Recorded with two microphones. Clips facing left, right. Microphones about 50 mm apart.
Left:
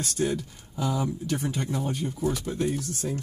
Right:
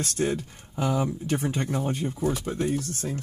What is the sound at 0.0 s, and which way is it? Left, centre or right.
Speech, right.